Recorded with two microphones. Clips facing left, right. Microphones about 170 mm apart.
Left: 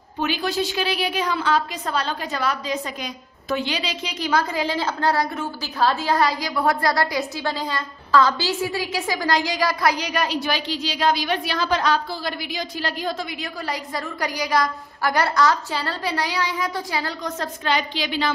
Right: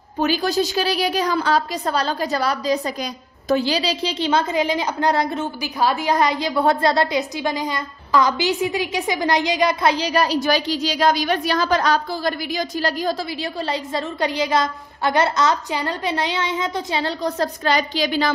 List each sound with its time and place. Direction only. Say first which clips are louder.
0.2 s a woman's voice: right 4 dB; 40° right (ahead or behind)